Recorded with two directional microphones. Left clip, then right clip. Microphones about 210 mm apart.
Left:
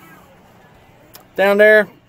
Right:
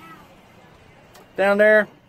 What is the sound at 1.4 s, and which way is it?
Speech, 25° left (ahead or behind).